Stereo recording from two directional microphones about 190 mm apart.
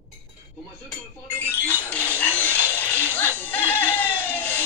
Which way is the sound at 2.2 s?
10° left (ahead or behind).